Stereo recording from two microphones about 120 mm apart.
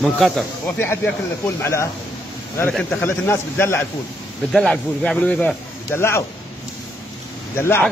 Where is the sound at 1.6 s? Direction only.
25° left (ahead or behind).